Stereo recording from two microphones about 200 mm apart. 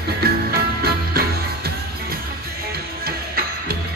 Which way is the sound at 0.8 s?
50° right (ahead or behind).